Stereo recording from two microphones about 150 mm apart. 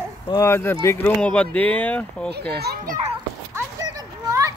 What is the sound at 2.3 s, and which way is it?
Speech, 90° right.